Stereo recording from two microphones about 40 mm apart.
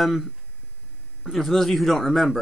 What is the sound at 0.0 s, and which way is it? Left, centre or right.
A man's voice, centre.